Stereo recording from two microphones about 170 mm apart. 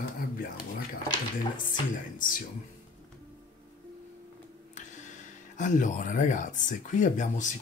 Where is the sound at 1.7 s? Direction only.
55° left (ahead or behind).